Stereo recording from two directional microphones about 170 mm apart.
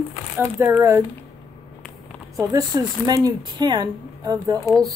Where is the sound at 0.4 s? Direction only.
15° right (ahead or behind).